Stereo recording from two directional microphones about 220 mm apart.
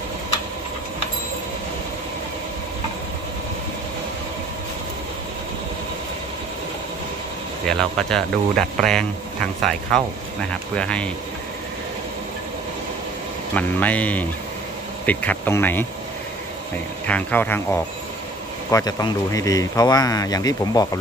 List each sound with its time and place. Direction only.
7.6 s speech: 5° left (ahead or behind)
13.6 s a man's voice: 5° left (ahead or behind)
17.0 s a man's voice: 5° left (ahead or behind)